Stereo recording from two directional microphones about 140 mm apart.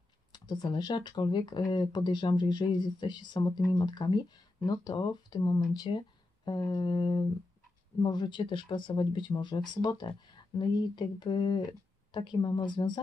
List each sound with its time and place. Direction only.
0.3 s speech: 30° left (ahead or behind)